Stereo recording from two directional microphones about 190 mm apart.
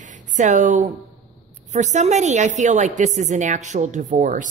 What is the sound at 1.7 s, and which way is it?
Speech, 40° right (ahead or behind).